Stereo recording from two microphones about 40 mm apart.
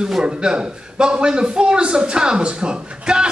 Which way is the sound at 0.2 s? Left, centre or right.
Right.